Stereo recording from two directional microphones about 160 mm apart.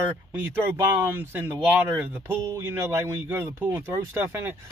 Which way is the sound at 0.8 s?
15° right (ahead or behind).